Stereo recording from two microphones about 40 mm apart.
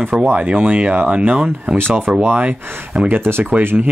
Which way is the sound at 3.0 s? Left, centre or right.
Centre.